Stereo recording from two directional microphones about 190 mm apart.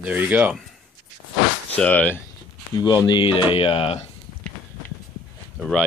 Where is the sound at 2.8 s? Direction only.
25° left (ahead or behind).